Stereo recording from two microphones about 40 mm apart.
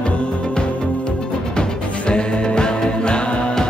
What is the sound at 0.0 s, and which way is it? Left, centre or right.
Music, left.